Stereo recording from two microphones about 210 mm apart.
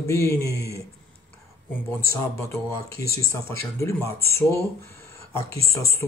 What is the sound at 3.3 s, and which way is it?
Speech, 15° left (ahead or behind).